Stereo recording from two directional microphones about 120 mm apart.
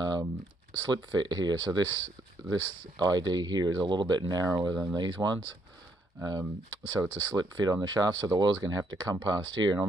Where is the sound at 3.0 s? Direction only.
35° right (ahead or behind).